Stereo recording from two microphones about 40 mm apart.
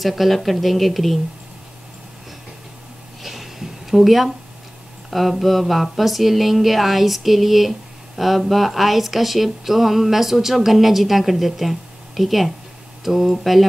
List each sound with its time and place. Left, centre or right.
0.0 s speech: centre
3.2 s a sound: centre
5.1 s speech: centre